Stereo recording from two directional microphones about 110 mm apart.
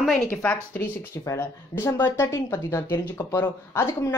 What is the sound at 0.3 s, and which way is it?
Speech, 15° left (ahead or behind).